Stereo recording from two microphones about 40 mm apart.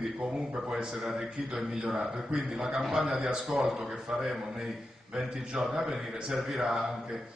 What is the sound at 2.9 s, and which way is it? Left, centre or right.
Speech, right.